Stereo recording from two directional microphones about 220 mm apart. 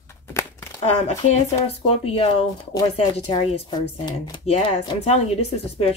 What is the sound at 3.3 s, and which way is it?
Speech, 25° left (ahead or behind).